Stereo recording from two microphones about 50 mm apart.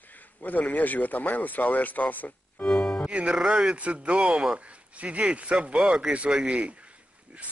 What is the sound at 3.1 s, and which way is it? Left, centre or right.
Speech, right.